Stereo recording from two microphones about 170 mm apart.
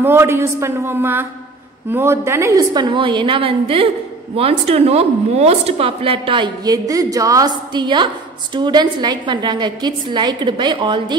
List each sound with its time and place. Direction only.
0.0 s a woman's voice: 15° right (ahead or behind)